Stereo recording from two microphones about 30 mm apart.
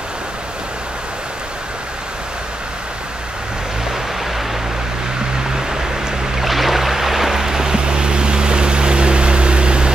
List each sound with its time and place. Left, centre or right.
5.4 s boat: centre
6.4 s a sound: centre
7.7 s vehicle: right